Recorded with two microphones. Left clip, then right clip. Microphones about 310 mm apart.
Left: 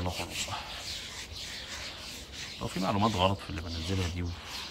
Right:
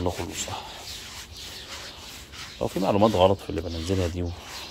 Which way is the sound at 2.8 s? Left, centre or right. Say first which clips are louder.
Right 8 dB; right.